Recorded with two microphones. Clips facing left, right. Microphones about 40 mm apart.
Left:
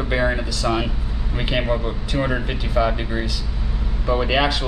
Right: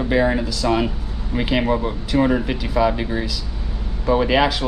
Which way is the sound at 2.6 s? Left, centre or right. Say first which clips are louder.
Right 2 dB; centre.